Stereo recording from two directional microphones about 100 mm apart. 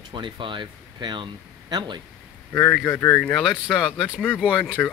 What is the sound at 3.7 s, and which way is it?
Speech, 5° left (ahead or behind).